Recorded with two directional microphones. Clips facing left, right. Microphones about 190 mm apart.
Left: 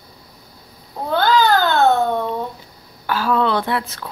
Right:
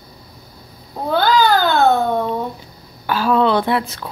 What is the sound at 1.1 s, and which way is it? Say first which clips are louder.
Babbling: right 1 dB; 10° right (ahead or behind).